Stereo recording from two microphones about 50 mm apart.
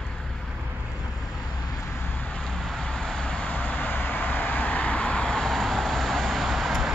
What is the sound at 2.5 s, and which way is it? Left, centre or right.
Vehicle, centre.